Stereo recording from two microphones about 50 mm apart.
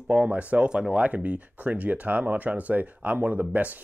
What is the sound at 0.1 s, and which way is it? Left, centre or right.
Speech, right.